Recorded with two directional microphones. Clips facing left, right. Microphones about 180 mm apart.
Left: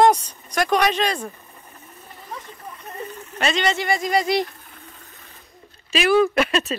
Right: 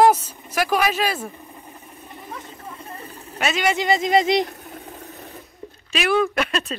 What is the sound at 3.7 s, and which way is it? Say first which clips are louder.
Speech: right 3 dB; 20° right (ahead or behind).